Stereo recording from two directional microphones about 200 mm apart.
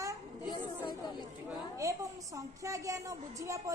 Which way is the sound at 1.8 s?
15° right (ahead or behind).